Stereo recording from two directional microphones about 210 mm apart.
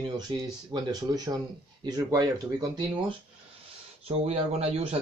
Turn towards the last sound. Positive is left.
turn(degrees=-30)  # may be behind; listen again after turning